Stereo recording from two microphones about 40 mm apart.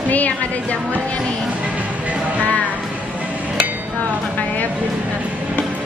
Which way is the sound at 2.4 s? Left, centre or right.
Left.